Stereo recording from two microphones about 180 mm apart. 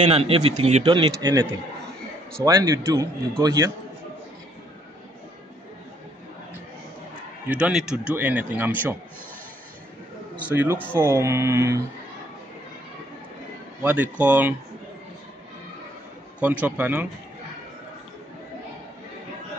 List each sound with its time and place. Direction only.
0.0 s a man's voice: 35° right (ahead or behind)
7.4 s speech: 5° right (ahead or behind)
10.5 s speech: 10° right (ahead or behind)
13.8 s speech: 10° right (ahead or behind)
16.3 s speech: 10° right (ahead or behind)